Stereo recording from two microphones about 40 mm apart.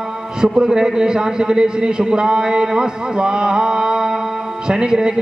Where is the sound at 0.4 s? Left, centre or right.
Centre.